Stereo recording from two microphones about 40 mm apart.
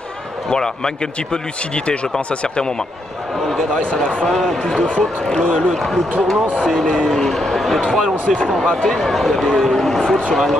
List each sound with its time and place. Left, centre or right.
0.5 s a man's voice: centre
3.7 s speech: left
4.3 s a man's voice: centre
4.8 s speech: left
6.7 s a man's voice: centre